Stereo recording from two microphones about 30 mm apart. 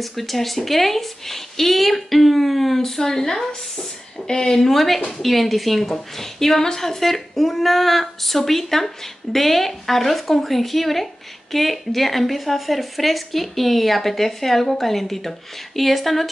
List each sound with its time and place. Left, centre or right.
0.0 s a woman's voice: centre
2.8 s speech: centre
4.6 s a woman's voice: centre